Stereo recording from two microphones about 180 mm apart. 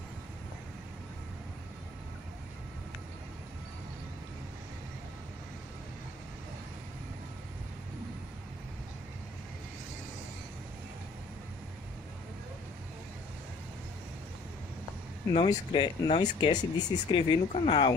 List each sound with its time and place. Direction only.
15.3 s speech: 25° left (ahead or behind)